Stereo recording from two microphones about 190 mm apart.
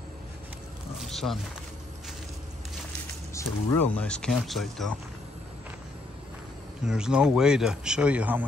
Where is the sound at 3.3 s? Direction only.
15° left (ahead or behind).